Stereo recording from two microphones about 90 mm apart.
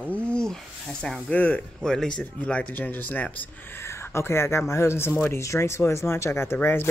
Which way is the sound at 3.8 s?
30° left (ahead or behind).